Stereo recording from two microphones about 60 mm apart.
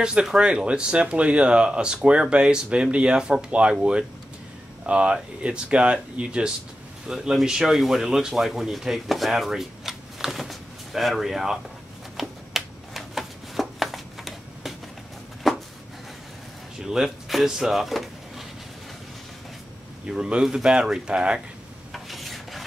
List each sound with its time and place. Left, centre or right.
0.0 s speech: centre
4.8 s speech: centre
12.2 s shuffling cards: centre
15.5 s a sound: centre
16.8 s speech: centre
20.1 s speech: centre
21.9 s rub: centre